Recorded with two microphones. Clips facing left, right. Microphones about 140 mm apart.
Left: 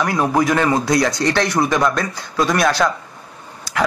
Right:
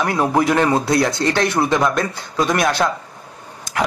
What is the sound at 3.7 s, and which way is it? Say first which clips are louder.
Dog: even; 20° right (ahead or behind).